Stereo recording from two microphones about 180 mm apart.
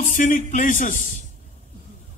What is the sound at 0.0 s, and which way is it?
A man's voice, 45° left (ahead or behind).